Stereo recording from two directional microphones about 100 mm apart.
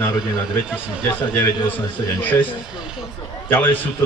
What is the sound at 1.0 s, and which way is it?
Speech, 20° left (ahead or behind).